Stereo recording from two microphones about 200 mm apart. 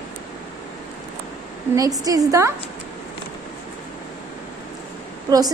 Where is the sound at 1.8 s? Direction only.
15° right (ahead or behind).